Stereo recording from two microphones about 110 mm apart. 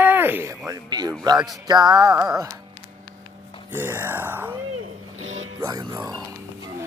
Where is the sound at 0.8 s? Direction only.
40° right (ahead or behind).